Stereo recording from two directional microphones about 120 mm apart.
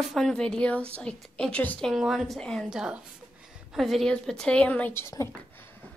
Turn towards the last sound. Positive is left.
turn(degrees=20)  # may be behind; listen again after turning